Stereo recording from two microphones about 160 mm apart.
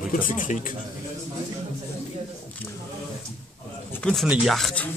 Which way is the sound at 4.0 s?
5° left (ahead or behind).